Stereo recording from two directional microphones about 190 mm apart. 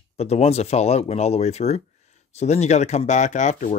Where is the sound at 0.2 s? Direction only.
35° left (ahead or behind).